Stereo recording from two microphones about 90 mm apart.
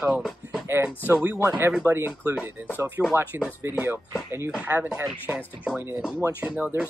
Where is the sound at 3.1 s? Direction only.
15° right (ahead or behind).